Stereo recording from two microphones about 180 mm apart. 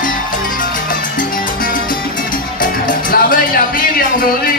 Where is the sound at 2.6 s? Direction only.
50° left (ahead or behind).